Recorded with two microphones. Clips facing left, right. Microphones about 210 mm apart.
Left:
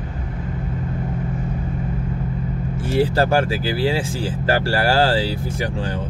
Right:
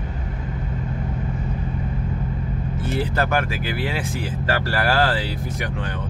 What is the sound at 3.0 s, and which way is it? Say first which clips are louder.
Speech: left 6 dB; 30° left (ahead or behind).